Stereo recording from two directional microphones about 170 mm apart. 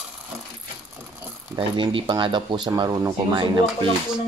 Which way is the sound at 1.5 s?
25° right (ahead or behind).